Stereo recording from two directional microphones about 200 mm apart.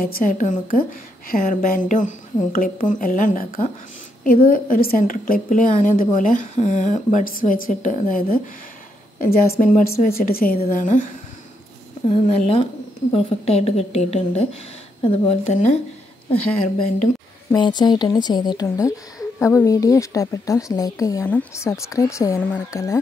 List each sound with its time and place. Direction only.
0.0 s a woman's voice: 45° left (ahead or behind)
12.1 s a woman's voice: 30° left (ahead or behind)
17.5 s a woman's voice: 20° left (ahead or behind)